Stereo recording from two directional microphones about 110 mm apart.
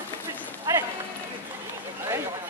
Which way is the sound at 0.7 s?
30° right (ahead or behind).